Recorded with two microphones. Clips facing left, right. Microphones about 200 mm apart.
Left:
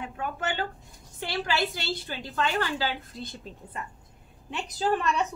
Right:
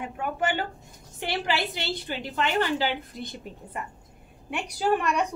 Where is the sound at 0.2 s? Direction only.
10° right (ahead or behind).